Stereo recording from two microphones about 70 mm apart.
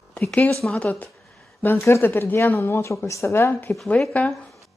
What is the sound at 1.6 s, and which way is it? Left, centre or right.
Speech, left.